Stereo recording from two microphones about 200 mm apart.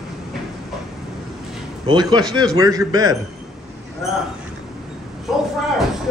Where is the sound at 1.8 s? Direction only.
20° right (ahead or behind).